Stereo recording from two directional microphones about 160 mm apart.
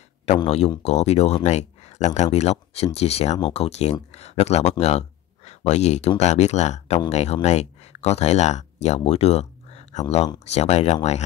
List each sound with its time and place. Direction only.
0.5 s speech: 40° left (ahead or behind)